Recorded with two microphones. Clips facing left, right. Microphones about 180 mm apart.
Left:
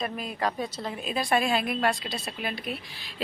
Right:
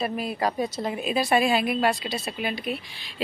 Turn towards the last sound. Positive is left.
turn(degrees=0)  # may be behind; listen again after turning